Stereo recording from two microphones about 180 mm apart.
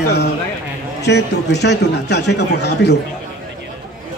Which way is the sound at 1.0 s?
70° left (ahead or behind).